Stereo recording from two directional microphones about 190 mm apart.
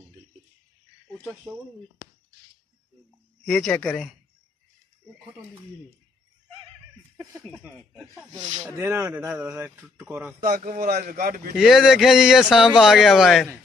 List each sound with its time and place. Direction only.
1.2 s speech: 5° right (ahead or behind)
3.4 s speech: 5° left (ahead or behind)
7.9 s speech: centre (ahead or behind)
8.7 s speech: 15° right (ahead or behind)
10.4 s speech: 45° right (ahead or behind)
11.5 s speech: centre (ahead or behind)